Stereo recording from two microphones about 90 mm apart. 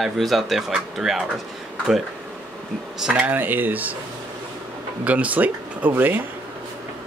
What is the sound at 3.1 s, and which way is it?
Speech, 20° right (ahead or behind).